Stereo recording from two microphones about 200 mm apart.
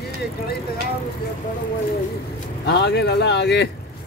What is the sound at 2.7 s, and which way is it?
Speech, 60° left (ahead or behind).